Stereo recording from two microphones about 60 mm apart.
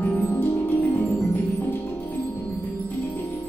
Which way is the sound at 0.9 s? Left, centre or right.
Left.